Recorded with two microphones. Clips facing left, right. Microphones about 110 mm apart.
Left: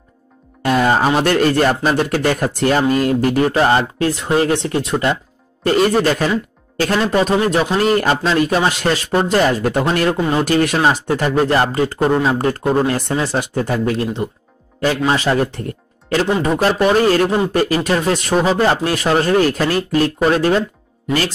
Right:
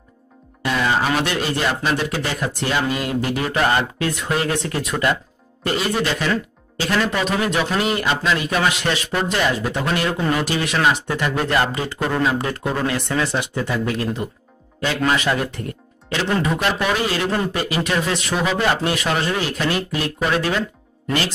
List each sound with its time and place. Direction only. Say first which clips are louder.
0.6 s music: left 5 dB; 45° left (ahead or behind)
1.2 s speech: left 8 dB; 50° left (ahead or behind); by 5.2 s 25° left (ahead or behind)
5.7 s speech: left 7 dB; 40° left (ahead or behind)
9.6 s speech: left 6 dB; 50° left (ahead or behind)
9.9 s speech: left 4 dB; 40° left (ahead or behind)
10.8 s speech: left 3 dB; 35° left (ahead or behind)
12.1 s speech: left 5 dB; 30° left (ahead or behind)